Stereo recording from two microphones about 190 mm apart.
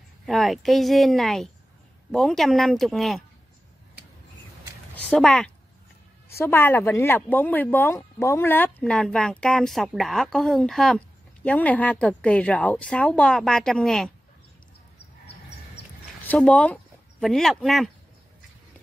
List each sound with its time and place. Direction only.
0.3 s a woman's voice: centre (ahead or behind)
5.1 s a woman's voice: 5° left (ahead or behind)
15.0 s a sound: 60° left (ahead or behind)
16.3 s speech: 5° left (ahead or behind)